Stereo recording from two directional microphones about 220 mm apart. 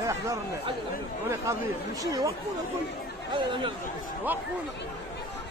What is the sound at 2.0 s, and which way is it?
Speech, 15° right (ahead or behind).